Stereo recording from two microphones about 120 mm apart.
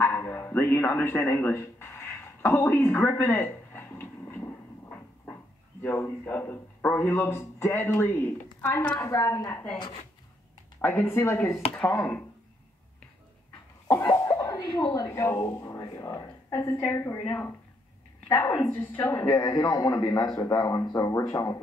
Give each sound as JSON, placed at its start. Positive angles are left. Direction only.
{"t": 0.0, "sound": "a sound", "side_deg": 20}
{"t": 4.8, "sound": "speech", "side_deg": 15}
{"t": 10.8, "sound": "a woman's voice", "side_deg": 15}
{"t": 13.8, "sound": "speech", "side_deg": 20}
{"t": 15.8, "sound": "a sound", "side_deg": 25}
{"t": 16.6, "sound": "speech", "side_deg": 15}
{"t": 18.3, "sound": "a woman's voice", "side_deg": 15}
{"t": 19.4, "sound": "a man's voice", "side_deg": 35}